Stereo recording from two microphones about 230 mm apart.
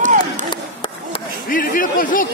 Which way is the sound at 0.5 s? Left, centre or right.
Centre.